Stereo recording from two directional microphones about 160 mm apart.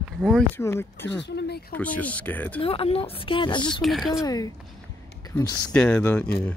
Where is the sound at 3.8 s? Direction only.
Centre (ahead or behind).